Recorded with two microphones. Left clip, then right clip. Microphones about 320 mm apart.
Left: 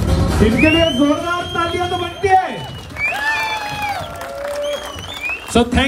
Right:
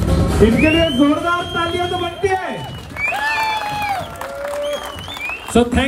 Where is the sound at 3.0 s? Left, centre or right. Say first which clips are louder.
Left 1 dB; right.